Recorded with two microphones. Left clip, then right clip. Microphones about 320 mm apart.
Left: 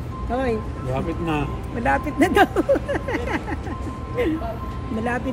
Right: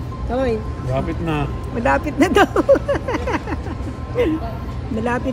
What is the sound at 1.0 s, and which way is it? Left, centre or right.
Speech, centre.